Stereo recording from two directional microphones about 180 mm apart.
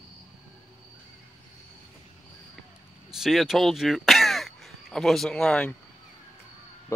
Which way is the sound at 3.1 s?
Centre (ahead or behind).